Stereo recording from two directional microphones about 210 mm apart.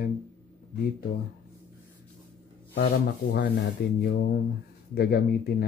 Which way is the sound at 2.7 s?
55° left (ahead or behind).